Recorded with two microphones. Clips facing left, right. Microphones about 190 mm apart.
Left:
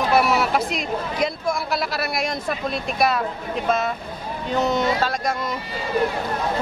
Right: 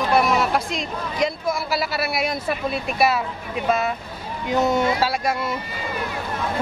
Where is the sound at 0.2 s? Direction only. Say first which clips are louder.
Even; 5° left (ahead or behind).